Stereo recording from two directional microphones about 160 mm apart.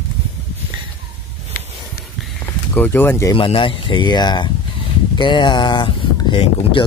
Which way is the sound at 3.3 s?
30° left (ahead or behind).